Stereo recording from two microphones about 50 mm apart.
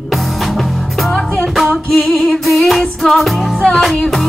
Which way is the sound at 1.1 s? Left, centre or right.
Centre.